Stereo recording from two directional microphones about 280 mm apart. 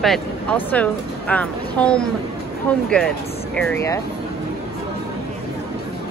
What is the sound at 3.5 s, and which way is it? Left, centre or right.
Speech, centre.